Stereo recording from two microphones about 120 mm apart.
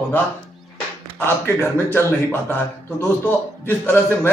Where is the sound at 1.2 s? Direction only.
20° left (ahead or behind).